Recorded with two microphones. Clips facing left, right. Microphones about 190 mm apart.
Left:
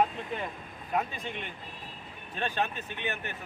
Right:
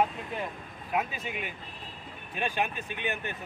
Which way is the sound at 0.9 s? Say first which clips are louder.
Even; 5° right (ahead or behind).